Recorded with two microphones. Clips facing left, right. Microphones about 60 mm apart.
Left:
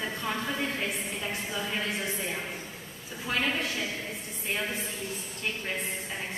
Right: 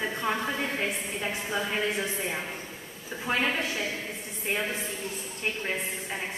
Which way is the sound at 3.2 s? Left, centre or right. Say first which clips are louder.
Right 2 dB; right.